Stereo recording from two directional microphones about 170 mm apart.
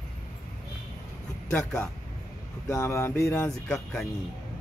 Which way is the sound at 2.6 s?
15° left (ahead or behind).